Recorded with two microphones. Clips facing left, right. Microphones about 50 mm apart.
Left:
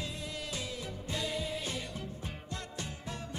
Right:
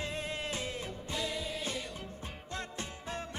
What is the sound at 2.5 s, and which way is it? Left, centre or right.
Music, right.